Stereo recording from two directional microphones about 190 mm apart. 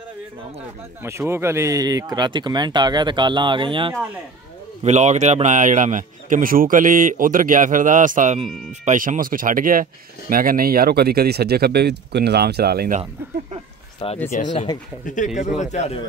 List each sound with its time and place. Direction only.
1.2 s speech: 15° right (ahead or behind)
4.8 s speech: 35° right (ahead or behind); by 13.0 s 55° right (ahead or behind)
14.0 s speech: 30° left (ahead or behind)